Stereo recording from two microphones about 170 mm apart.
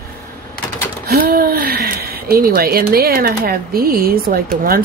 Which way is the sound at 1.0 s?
60° right (ahead or behind).